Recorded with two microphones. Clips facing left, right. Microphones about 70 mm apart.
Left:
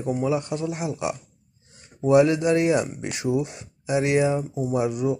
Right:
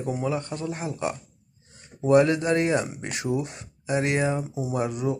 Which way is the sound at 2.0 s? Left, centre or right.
Centre.